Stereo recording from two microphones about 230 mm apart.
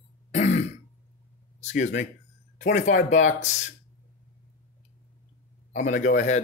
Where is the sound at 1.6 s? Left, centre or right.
Left.